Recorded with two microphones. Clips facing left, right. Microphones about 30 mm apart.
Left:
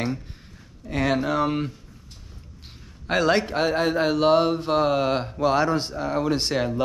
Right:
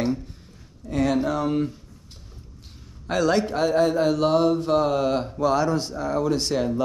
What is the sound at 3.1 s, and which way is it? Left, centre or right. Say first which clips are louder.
A man's voice: even; left.